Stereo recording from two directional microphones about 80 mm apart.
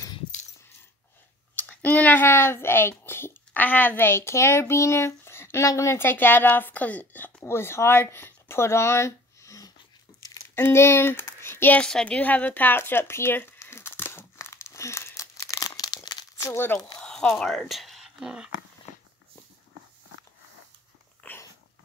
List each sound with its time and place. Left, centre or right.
1.5 s speech: left
11.8 s a sound: centre; by 16.3 s left
16.3 s speech: left
17.0 s speech: centre
21.2 s dog: centre